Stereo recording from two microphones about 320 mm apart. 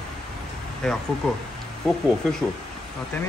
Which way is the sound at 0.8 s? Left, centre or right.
Centre.